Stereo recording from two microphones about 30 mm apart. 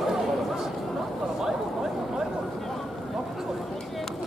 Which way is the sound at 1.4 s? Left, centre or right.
Centre.